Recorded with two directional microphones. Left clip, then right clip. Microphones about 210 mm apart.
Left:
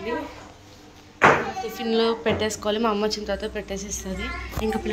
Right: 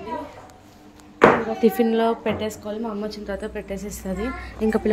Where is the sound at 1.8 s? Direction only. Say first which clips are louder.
Right 1 dB; 15° right (ahead or behind).